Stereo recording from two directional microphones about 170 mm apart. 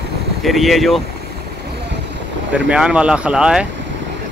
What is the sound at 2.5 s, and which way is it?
Speech, 5° right (ahead or behind).